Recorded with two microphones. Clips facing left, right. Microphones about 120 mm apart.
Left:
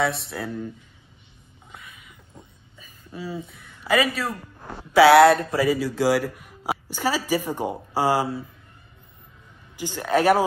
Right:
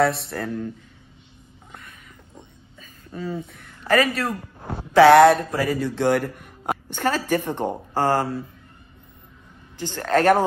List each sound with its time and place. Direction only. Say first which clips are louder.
0.0 s a man's voice: right 4 dB; centre (ahead or behind)
1.7 s a sound: right 1 dB; centre (ahead or behind)
2.8 s a man's voice: right 3 dB; 5° left (ahead or behind)
4.6 s a sound: right 5 dB; 25° right (ahead or behind)
4.9 s a man's voice: right 1 dB; 5° left (ahead or behind)
9.8 s speech: right 1 dB; 10° left (ahead or behind)